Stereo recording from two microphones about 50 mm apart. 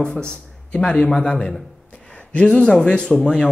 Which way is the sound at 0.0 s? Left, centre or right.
Centre.